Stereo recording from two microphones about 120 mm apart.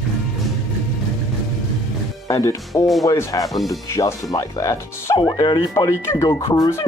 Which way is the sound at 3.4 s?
Centre (ahead or behind).